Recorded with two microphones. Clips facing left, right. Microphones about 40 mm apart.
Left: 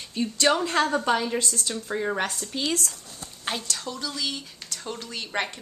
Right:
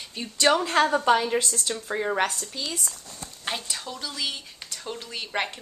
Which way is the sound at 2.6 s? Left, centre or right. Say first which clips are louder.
Left 6 dB; left.